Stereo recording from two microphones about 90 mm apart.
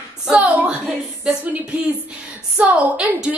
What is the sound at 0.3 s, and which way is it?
A woman's voice, 15° right (ahead or behind).